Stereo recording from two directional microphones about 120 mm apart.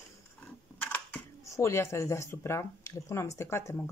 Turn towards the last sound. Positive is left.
turn(degrees=25)  # may be behind; listen again after turning